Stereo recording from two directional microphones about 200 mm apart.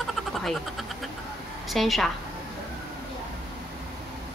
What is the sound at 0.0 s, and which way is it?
Frog, centre (ahead or behind).